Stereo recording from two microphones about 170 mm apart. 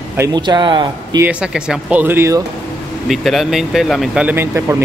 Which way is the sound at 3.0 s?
Centre (ahead or behind).